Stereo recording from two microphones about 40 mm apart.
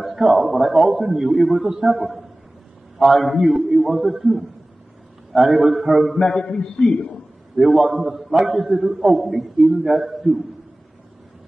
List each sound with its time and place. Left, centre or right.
0.0 s a man's voice: centre
6.1 s a man's voice: left
7.5 s a man's voice: centre